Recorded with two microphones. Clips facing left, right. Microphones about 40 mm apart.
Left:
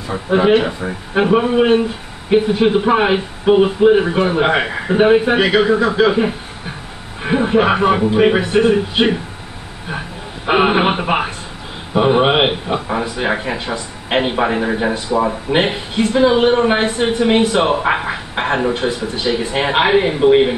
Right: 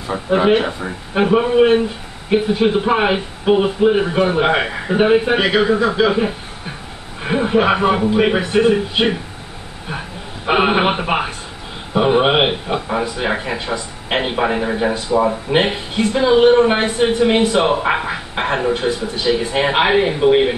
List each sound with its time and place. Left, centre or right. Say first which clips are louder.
0.1 s a man's voice: left 1 dB; centre